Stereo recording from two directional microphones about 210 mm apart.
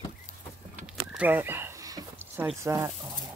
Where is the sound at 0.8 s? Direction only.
5° right (ahead or behind).